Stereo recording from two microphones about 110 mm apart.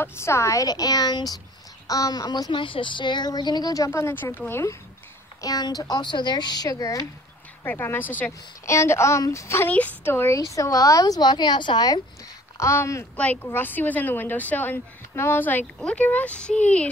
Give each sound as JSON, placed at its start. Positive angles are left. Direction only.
{"t": 0.0, "sound": "speech", "side_deg": 25}
{"t": 5.4, "sound": "speech", "side_deg": 35}
{"t": 7.6, "sound": "a woman's voice", "side_deg": 20}
{"t": 9.7, "sound": "a woman's voice", "side_deg": 15}
{"t": 12.5, "sound": "a woman's voice", "side_deg": 25}
{"t": 13.1, "sound": "speech", "side_deg": 15}